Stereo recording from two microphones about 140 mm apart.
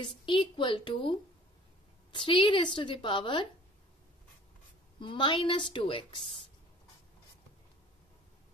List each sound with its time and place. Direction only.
0.0 s a woman's voice: 35° left (ahead or behind)
2.1 s a woman's voice: 35° left (ahead or behind)
5.0 s a woman's voice: 35° left (ahead or behind)